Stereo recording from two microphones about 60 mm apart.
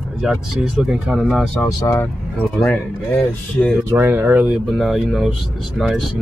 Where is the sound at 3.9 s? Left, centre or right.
Right.